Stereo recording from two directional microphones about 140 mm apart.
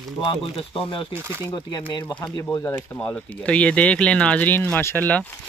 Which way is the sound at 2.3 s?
25° left (ahead or behind).